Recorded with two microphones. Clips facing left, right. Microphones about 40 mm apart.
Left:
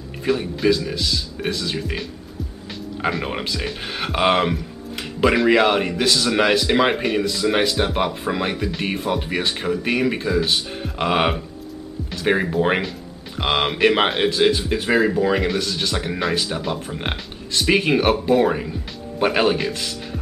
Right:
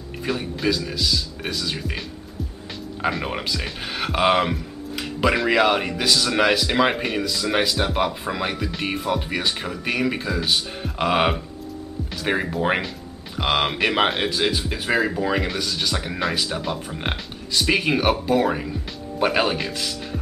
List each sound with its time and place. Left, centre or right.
0.2 s speech: centre